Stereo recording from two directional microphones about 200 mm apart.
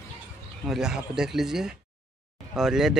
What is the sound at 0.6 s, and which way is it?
Speech, centre (ahead or behind).